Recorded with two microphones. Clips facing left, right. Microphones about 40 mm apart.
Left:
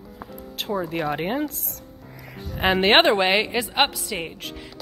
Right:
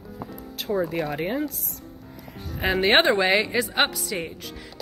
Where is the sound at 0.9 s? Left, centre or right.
Left.